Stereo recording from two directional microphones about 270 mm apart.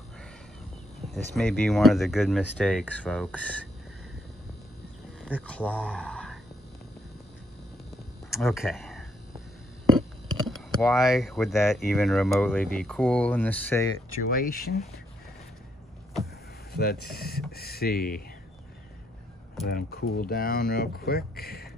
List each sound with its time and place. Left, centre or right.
1.1 s speech: centre
5.2 s speech: centre
5.9 s a sound: centre
8.3 s speech: centre
9.9 s a sound: centre
11.9 s speech: centre
14.3 s speech: left
16.7 s speech: left
19.7 s speech: left